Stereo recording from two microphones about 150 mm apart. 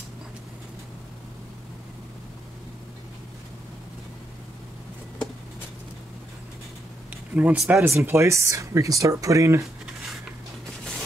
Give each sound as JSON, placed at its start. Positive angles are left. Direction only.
{"t": 7.1, "sound": "speech", "side_deg": -10}
{"t": 7.8, "sound": "speech", "side_deg": -15}